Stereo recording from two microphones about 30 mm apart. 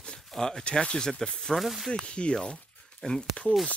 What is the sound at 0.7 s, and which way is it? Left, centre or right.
Speech, left.